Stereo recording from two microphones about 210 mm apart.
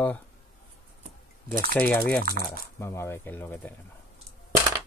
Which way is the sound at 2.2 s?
45° right (ahead or behind).